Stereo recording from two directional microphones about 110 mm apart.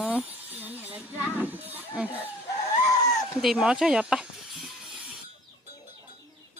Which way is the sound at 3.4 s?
5° right (ahead or behind).